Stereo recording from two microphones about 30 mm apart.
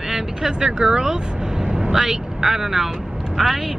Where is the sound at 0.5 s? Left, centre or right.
Right; by 2.9 s centre.